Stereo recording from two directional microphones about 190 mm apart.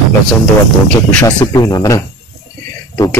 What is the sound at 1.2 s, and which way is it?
Speech, 20° left (ahead or behind).